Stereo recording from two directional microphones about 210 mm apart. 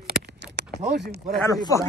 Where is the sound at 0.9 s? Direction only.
50° right (ahead or behind).